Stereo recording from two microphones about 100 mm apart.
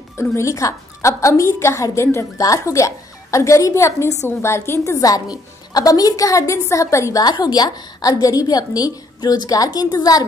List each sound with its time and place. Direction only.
0.2 s a woman's voice: 30° left (ahead or behind)